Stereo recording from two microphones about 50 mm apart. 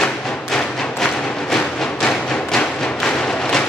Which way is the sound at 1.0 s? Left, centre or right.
Centre.